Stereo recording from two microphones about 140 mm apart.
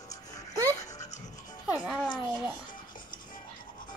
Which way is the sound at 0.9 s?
60° left (ahead or behind).